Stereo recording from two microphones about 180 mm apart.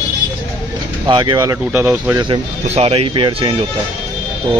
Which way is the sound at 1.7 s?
10° right (ahead or behind).